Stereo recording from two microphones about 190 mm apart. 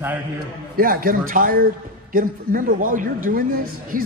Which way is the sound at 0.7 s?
50° right (ahead or behind).